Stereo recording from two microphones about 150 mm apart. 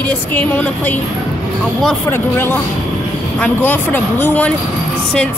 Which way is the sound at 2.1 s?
15° left (ahead or behind).